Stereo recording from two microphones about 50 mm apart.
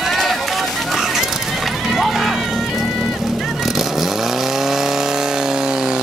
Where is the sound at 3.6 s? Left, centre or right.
Centre.